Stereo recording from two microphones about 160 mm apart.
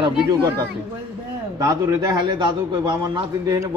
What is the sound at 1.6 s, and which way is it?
A man's voice, 20° right (ahead or behind).